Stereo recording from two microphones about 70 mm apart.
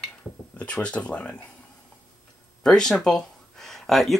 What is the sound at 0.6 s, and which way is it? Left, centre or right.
Speech, centre.